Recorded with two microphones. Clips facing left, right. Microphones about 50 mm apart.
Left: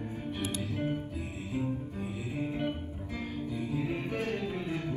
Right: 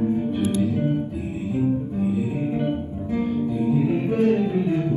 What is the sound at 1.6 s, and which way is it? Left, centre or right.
Music, centre.